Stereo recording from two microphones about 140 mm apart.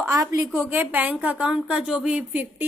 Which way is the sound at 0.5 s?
10° right (ahead or behind).